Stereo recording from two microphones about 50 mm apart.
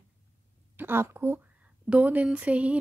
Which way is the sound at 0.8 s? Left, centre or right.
Right.